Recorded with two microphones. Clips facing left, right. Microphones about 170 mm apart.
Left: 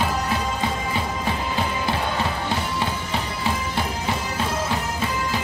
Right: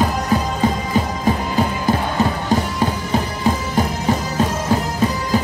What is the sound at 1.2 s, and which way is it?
Music, 45° right (ahead or behind).